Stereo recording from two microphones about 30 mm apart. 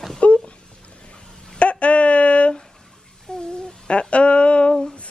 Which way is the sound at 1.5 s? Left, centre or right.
Left.